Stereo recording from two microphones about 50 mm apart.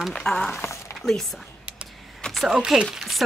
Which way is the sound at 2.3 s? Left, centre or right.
Centre.